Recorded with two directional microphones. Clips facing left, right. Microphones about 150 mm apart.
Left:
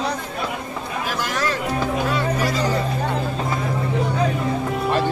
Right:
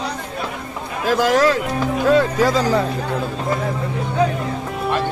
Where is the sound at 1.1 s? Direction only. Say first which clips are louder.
Right 14 dB; 90° right.